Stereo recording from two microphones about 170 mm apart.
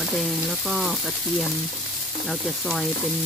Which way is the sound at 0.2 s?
Centre (ahead or behind).